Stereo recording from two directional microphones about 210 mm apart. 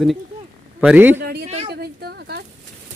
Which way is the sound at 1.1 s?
50° right (ahead or behind).